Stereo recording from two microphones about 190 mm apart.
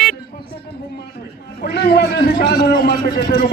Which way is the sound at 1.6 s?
55° left (ahead or behind).